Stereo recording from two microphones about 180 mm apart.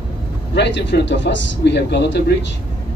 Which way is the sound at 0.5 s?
75° left (ahead or behind).